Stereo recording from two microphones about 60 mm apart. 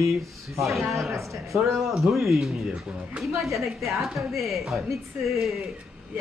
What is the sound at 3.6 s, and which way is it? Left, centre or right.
A man's voice, centre.